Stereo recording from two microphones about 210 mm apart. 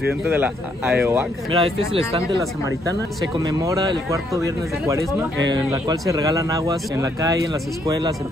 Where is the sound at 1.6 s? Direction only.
25° right (ahead or behind).